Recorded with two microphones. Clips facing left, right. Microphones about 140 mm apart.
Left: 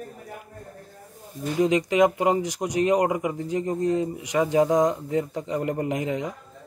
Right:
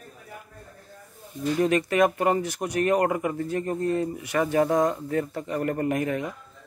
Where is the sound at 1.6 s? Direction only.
15° left (ahead or behind).